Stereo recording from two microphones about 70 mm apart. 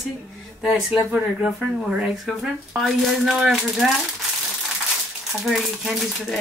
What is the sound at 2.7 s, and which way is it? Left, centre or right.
Speech, centre.